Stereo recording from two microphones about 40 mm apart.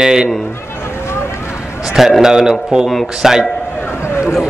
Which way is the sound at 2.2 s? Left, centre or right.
Centre.